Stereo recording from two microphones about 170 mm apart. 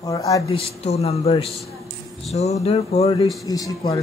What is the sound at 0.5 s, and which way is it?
Speech, 35° left (ahead or behind).